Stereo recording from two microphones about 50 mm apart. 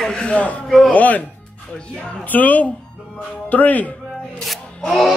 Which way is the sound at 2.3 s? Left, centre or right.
Left.